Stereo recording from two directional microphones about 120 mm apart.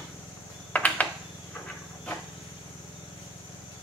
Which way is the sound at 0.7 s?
10° left (ahead or behind).